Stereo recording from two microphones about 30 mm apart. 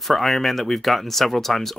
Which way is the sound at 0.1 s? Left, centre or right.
Centre.